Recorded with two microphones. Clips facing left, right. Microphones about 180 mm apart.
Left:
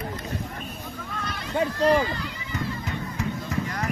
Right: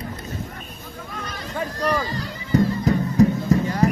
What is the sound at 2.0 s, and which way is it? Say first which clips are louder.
Music: even; 40° right (ahead or behind).